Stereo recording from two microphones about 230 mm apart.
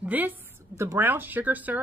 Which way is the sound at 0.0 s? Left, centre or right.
Centre.